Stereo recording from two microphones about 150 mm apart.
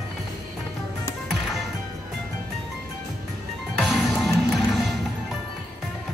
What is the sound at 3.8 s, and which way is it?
Music, centre (ahead or behind).